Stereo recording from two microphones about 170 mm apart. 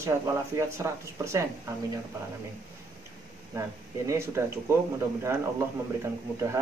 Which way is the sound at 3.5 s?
15° right (ahead or behind).